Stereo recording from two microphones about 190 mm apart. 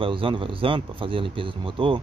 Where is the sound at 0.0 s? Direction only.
25° right (ahead or behind).